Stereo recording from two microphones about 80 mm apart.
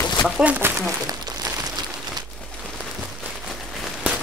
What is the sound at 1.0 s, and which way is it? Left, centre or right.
Crumpling, right.